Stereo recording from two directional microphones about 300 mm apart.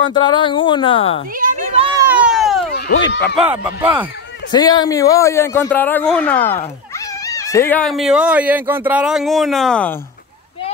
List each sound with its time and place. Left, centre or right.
0.1 s a man's voice: centre
1.4 s children playing: right
2.0 s a sound: centre
2.7 s speech: left
3.3 s speech: centre
4.5 s a man's voice: centre